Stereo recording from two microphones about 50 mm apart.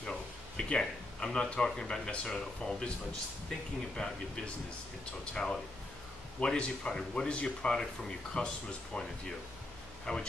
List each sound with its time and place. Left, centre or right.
0.6 s speech: centre
4.0 s speech: centre
5.2 s speech: centre